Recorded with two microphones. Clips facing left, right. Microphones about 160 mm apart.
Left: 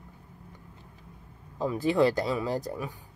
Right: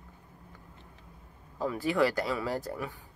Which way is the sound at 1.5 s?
20° left (ahead or behind).